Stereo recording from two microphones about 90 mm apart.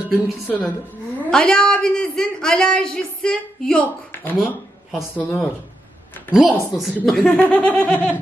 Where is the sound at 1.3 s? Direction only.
10° left (ahead or behind).